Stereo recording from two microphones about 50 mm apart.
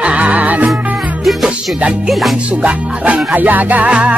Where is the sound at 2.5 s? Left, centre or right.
Right.